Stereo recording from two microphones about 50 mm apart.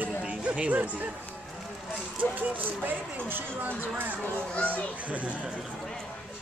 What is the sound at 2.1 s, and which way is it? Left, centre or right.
Speech, right.